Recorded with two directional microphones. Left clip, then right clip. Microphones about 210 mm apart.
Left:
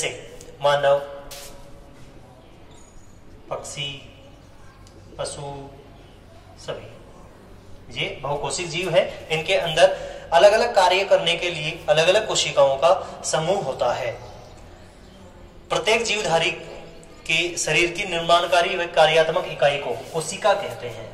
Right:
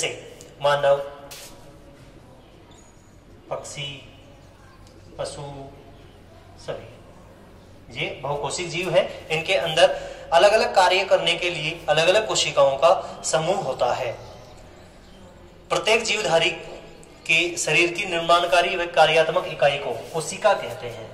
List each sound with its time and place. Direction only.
0.6 s a sound: 10° right (ahead or behind)
3.4 s a woman's voice: centre (ahead or behind)
5.1 s a man's voice: centre (ahead or behind)
6.7 s a woman's voice: centre (ahead or behind)
7.9 s speech: centre (ahead or behind); by 14.0 s 15° right (ahead or behind)
15.7 s a woman's voice: 20° right (ahead or behind)